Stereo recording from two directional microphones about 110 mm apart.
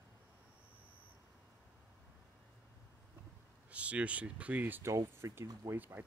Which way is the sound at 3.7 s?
10° right (ahead or behind).